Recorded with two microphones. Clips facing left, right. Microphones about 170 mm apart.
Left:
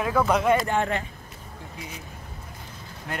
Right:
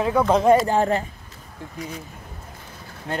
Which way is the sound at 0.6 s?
35° right (ahead or behind).